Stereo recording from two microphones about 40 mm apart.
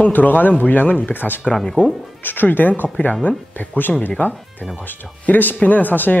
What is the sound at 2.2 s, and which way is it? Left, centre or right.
Speech, left.